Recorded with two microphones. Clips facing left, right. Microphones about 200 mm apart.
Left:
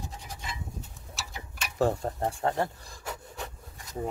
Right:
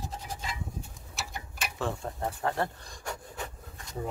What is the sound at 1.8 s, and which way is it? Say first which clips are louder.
Speech: left 7 dB; 40° left (ahead or behind).